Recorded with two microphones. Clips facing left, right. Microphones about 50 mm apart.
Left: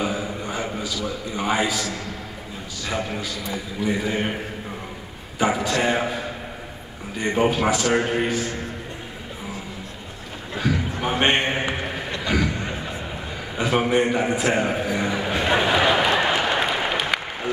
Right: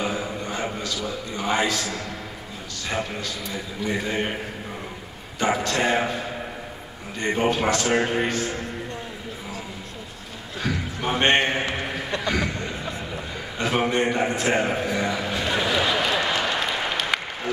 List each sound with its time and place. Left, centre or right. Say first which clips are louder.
0.0 s a sound: left 1 dB; centre
1.0 s a man's voice: left 3 dB; centre
1.6 s a man's voice: even; centre
2.9 s a man's voice: left 1 dB; centre
5.4 s a man's voice: left 1 dB; centre
7.3 s a man's voice: left 2 dB; centre
10.6 s a man's voice: left 3 dB; centre
13.6 s a man's voice: left 2 dB; centre
14.9 s a man's voice: left 1 dB; centre
15.3 s a sound: left 5 dB; left